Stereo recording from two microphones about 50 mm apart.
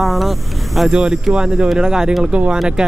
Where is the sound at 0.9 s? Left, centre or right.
Centre.